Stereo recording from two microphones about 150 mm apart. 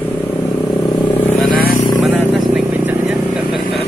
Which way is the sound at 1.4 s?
75° left (ahead or behind).